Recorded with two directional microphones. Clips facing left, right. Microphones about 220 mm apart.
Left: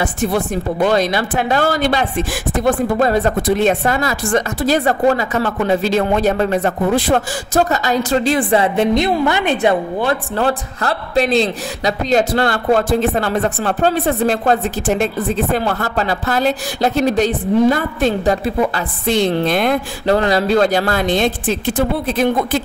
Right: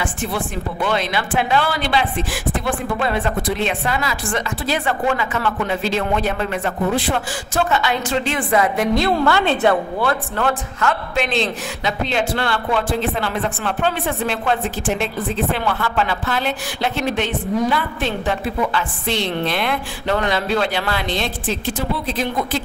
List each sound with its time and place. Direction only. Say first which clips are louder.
0.0 s a woman's voice: left 6 dB; 40° left (ahead or behind); by 10.1 s 20° left (ahead or behind)
10.3 s a man's voice: left 3 dB; 35° left (ahead or behind); by 22.6 s 50° left (ahead or behind)